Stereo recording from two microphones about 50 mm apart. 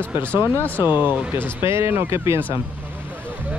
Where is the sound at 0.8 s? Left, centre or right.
Right.